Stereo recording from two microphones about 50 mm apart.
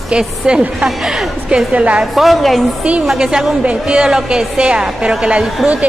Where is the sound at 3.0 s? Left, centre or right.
Centre.